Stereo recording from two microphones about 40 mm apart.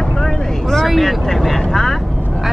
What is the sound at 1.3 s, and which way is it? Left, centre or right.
Vehicle, centre.